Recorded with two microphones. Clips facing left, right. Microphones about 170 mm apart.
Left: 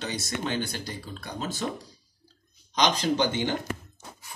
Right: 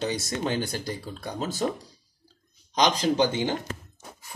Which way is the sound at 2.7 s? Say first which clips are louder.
Right 2 dB; 35° right (ahead or behind).